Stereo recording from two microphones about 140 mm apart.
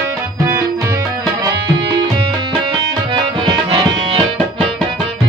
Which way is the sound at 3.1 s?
35° right (ahead or behind).